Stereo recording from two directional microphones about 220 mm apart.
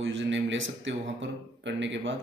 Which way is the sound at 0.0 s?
60° right (ahead or behind).